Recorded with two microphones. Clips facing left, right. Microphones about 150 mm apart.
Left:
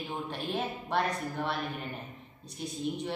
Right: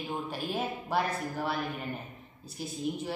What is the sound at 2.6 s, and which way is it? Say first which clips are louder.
Speech: even; 5° right (ahead or behind).